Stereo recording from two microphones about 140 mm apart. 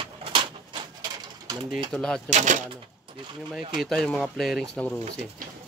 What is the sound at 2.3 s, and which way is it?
Speech, 60° right (ahead or behind).